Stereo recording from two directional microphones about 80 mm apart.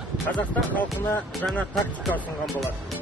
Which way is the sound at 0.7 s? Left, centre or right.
Centre.